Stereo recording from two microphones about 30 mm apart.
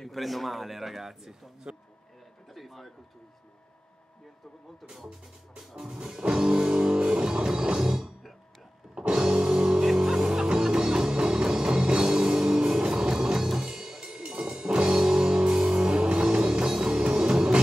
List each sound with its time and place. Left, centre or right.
0.1 s speech: centre
2.5 s a sound: centre
5.6 s music: centre
9.1 s music: centre
12.0 s music: centre